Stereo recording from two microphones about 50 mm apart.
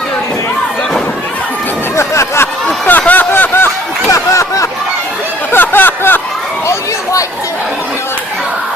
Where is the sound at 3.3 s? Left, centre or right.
Left.